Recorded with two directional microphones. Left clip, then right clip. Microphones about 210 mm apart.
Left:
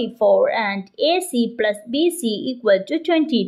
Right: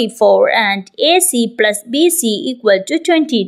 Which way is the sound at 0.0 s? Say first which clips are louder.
Right 5 dB; 30° right (ahead or behind).